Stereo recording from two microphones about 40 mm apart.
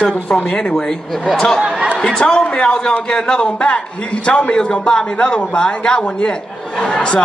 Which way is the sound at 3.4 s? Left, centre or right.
Left.